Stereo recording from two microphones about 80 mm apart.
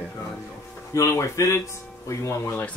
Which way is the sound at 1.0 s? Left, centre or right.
Left.